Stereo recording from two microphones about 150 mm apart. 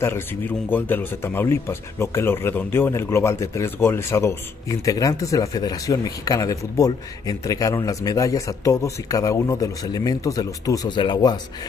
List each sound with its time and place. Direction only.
0.0 s speech: 15° left (ahead or behind); by 11.3 s 30° left (ahead or behind)